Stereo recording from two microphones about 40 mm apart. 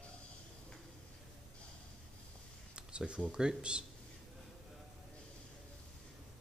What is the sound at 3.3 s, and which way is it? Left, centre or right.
Speech, right.